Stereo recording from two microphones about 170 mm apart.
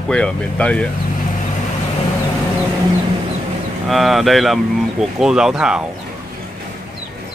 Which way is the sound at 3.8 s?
Centre (ahead or behind).